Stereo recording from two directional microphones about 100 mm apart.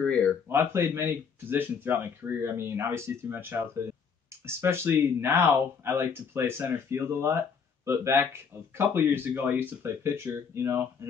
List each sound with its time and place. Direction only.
0.0 s speech: 10° left (ahead or behind)
0.5 s speech: 25° right (ahead or behind)